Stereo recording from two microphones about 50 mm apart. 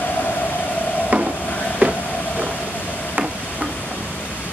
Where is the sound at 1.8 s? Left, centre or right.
Right.